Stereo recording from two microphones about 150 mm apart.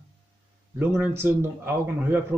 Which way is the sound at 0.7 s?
10° right (ahead or behind).